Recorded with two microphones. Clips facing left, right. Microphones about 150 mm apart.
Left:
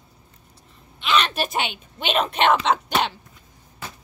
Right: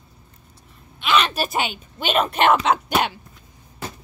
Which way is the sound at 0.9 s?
5° right (ahead or behind).